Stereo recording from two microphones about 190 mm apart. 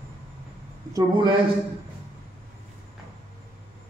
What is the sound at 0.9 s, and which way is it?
Speech, 25° right (ahead or behind).